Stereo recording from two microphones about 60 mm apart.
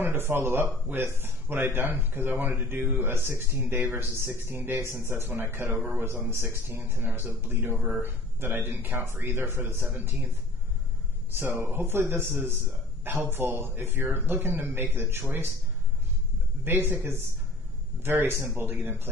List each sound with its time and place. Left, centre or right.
0.0 s speech: right
11.3 s speech: right
16.7 s speech: right
18.0 s speech: right